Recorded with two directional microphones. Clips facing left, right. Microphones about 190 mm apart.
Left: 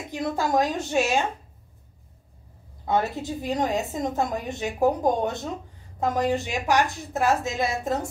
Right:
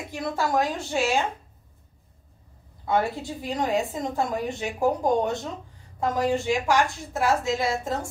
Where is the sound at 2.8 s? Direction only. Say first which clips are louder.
Even; 20° left (ahead or behind).